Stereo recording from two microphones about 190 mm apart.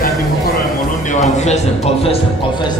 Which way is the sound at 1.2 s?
35° left (ahead or behind).